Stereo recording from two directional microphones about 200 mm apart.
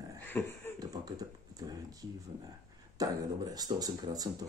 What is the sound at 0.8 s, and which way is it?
Speech, 20° right (ahead or behind).